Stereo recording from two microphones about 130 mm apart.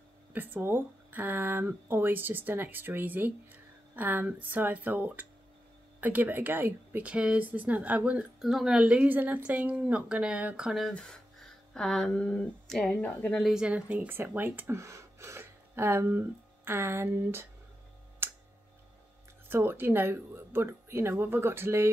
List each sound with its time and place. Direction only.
0.3 s speech: 15° right (ahead or behind); by 13.4 s 10° left (ahead or behind)
13.4 s speech: 5° right (ahead or behind)
18.2 s tick: 15° right (ahead or behind)
19.5 s speech: 15° right (ahead or behind)